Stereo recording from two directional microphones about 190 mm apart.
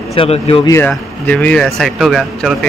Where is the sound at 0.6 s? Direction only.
15° left (ahead or behind).